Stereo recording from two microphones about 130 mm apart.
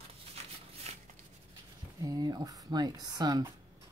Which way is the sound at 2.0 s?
30° right (ahead or behind).